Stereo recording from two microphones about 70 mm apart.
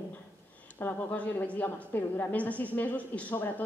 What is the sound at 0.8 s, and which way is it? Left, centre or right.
A woman's voice, left.